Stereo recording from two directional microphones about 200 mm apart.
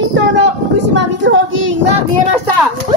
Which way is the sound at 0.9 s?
65° right (ahead or behind).